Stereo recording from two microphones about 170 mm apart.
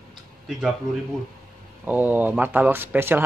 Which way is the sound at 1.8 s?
10° right (ahead or behind).